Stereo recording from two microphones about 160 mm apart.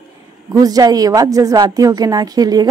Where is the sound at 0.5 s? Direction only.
25° right (ahead or behind).